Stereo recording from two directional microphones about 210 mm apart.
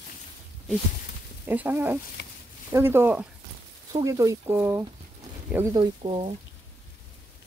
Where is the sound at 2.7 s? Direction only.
10° right (ahead or behind).